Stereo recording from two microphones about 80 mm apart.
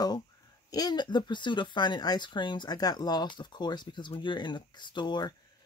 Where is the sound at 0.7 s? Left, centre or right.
Left.